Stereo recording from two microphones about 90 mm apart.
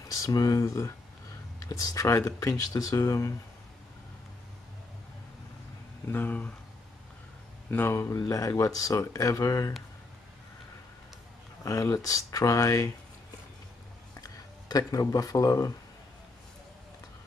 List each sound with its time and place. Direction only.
0.2 s speech: 45° left (ahead or behind)
0.7 s speech: 30° left (ahead or behind)
6.1 s speech: 20° left (ahead or behind)
7.7 s speech: 25° left (ahead or behind)
11.6 s speech: 35° left (ahead or behind)
14.2 s speech: 40° left (ahead or behind)